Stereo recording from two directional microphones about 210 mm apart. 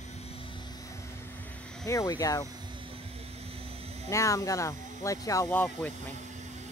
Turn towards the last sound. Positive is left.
turn(degrees=10)  # may be behind; listen again after turning